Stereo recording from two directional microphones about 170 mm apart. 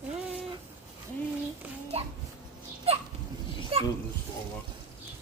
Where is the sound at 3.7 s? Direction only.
35° right (ahead or behind).